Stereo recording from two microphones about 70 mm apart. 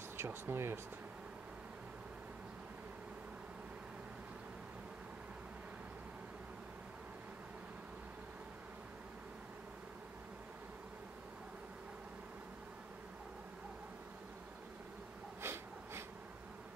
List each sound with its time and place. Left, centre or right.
0.2 s speech: right
15.4 s snort: right